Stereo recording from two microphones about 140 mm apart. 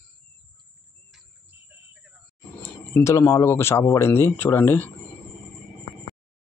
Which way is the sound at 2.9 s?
20° left (ahead or behind).